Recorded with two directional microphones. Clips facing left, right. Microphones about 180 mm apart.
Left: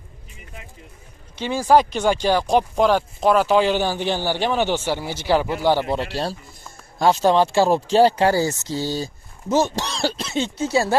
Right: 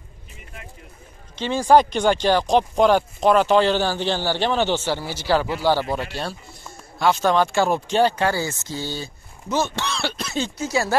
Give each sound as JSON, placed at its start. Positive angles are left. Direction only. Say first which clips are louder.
{"t": 1.3, "sound": "speech", "louder": "right 1 dB", "side_deg": 10}
{"t": 5.9, "sound": "speech", "louder": "left 3 dB", "side_deg": 35}
{"t": 10.2, "sound": "speech", "louder": "left 2 dB", "side_deg": 25}